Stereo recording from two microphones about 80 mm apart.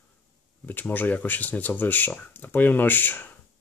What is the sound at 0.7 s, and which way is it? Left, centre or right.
Speech, left.